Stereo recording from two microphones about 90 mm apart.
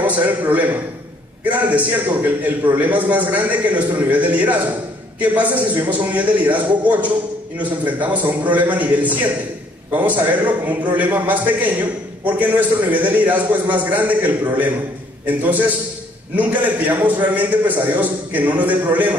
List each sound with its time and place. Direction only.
0.0 s a man's voice: 15° right (ahead or behind)